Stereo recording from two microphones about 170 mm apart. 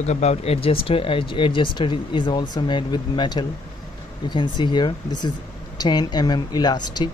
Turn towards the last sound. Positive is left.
turn(degrees=25)  # may be behind; listen again after turning